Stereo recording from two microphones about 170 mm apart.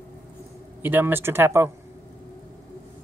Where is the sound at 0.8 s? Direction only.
10° right (ahead or behind).